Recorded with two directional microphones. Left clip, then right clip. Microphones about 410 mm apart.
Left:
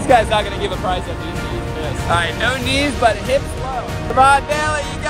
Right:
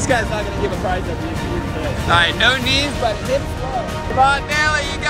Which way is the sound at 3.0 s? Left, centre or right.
Left.